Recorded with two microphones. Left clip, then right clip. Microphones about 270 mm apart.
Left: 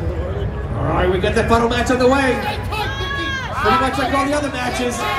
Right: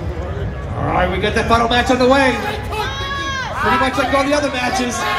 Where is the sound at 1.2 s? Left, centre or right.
Right.